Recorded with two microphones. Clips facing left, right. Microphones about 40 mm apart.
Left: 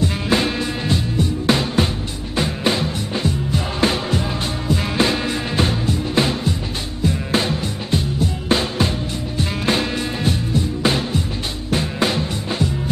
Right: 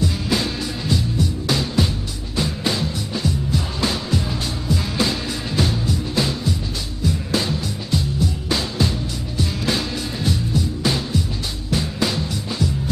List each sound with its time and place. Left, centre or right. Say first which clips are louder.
0.0 s music: left 3 dB; left